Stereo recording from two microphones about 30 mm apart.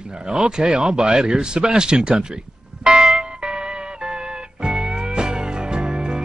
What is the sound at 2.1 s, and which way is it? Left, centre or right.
Music, right.